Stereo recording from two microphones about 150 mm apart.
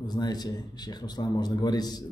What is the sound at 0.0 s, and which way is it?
A man's voice, 25° left (ahead or behind).